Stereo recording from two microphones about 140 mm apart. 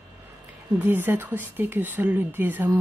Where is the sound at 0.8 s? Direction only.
15° right (ahead or behind).